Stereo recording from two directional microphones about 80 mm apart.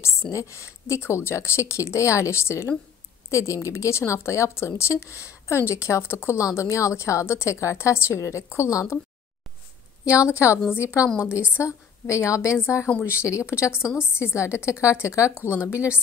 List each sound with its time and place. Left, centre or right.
0.0 s a woman's voice: left
10.7 s a woman's voice: left
11.1 s a woman's voice: centre
11.5 s a woman's voice: left
13.1 s a woman's voice: centre
13.4 s a woman's voice: left
13.7 s a woman's voice: centre
14.1 s a woman's voice: left